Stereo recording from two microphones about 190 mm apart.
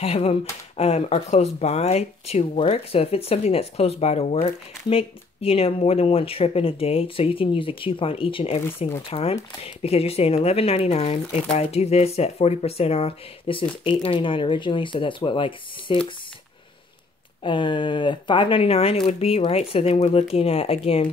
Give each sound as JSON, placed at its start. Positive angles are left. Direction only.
{"t": 0.0, "sound": "speech", "side_deg": 30}
{"t": 8.6, "sound": "speech", "side_deg": 10}
{"t": 9.1, "sound": "speech", "side_deg": 30}
{"t": 17.4, "sound": "speech", "side_deg": 25}